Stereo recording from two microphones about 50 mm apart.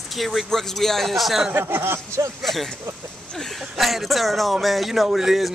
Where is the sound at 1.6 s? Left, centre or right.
Right.